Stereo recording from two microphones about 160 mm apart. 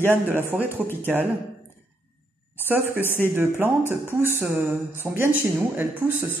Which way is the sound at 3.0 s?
15° left (ahead or behind).